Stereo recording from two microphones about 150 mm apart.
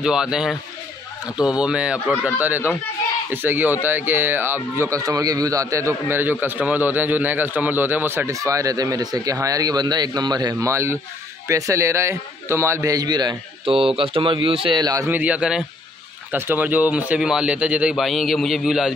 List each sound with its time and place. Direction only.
0.0 s a man's voice: 5° right (ahead or behind); by 15.0 s 25° right (ahead or behind)
15.0 s speech: 10° right (ahead or behind)